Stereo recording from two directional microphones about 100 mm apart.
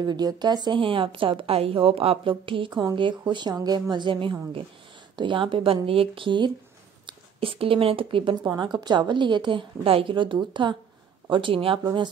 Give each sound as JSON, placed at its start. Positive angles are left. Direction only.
{"t": 0.0, "sound": "a woman's voice", "side_deg": -45}
{"t": 0.7, "sound": "a woman's voice", "side_deg": -60}
{"t": 2.7, "sound": "a woman's voice", "side_deg": -45}
{"t": 3.9, "sound": "a woman's voice", "side_deg": -55}
{"t": 7.1, "sound": "speech", "side_deg": -65}
{"t": 8.5, "sound": "a woman's voice", "side_deg": -45}